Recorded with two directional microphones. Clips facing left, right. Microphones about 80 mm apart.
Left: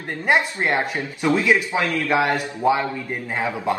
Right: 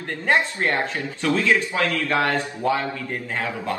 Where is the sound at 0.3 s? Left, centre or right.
Centre.